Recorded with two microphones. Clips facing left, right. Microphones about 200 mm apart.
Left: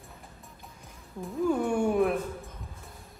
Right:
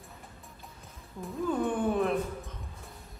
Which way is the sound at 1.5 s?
10° left (ahead or behind).